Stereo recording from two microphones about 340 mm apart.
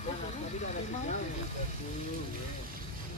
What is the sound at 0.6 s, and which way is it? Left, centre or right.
Speech, left.